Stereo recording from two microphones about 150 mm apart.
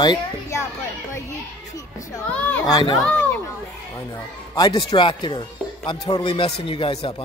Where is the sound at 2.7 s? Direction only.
25° left (ahead or behind).